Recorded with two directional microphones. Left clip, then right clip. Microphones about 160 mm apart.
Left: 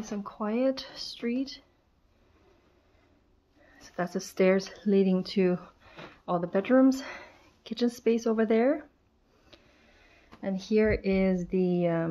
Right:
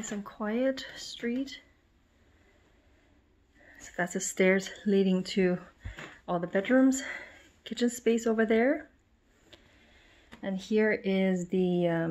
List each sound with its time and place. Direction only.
0.0 s speech: 15° left (ahead or behind)
3.6 s speech: 5° left (ahead or behind)